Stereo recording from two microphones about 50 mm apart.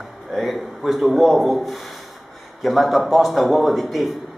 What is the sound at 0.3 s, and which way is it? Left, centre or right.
A man's voice, centre.